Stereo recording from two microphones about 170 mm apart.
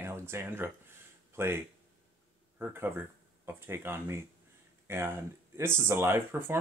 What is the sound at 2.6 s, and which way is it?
Speech, 10° right (ahead or behind).